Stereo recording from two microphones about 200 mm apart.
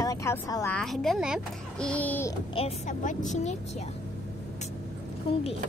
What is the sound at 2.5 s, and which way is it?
Speech, 30° left (ahead or behind).